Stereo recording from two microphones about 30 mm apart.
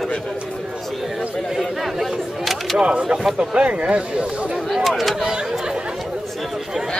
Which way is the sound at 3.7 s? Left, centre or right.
Right.